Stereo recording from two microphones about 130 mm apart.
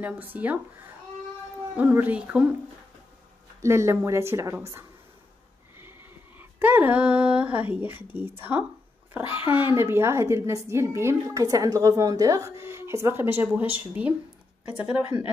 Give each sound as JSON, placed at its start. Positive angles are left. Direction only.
{"t": 0.0, "sound": "speech", "side_deg": -15}
{"t": 1.8, "sound": "speech", "side_deg": -10}
{"t": 3.6, "sound": "a woman's voice", "side_deg": -20}
{"t": 5.9, "sound": "a child's voice", "side_deg": -15}